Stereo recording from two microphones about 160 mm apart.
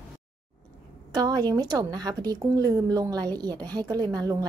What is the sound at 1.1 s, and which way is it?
Speech, 25° right (ahead or behind).